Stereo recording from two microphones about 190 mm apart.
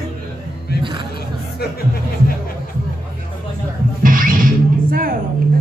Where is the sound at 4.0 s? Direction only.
45° right (ahead or behind).